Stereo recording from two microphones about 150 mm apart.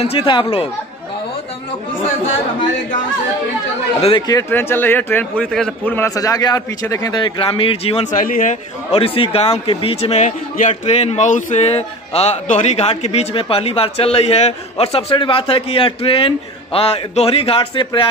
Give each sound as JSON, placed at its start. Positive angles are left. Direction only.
{"t": 0.0, "sound": "a man's voice", "side_deg": 40}
{"t": 4.3, "sound": "a man's voice", "side_deg": 15}
{"t": 8.1, "sound": "speech", "side_deg": 60}
{"t": 8.9, "sound": "a man's voice", "side_deg": 40}